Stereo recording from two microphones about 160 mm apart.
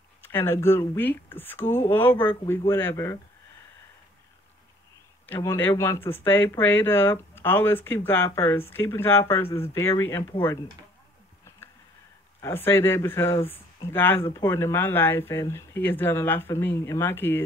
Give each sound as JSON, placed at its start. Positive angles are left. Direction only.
{"t": 0.2, "sound": "speech", "side_deg": 15}
{"t": 5.2, "sound": "speech", "side_deg": 15}
{"t": 12.4, "sound": "speech", "side_deg": 15}